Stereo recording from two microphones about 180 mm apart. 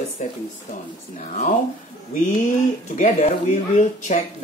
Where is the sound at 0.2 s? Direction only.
40° left (ahead or behind).